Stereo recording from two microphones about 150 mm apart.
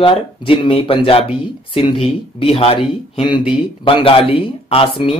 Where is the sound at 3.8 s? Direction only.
35° left (ahead or behind).